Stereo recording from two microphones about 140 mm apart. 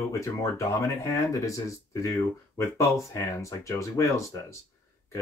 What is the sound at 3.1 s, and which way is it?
Speech, 20° left (ahead or behind).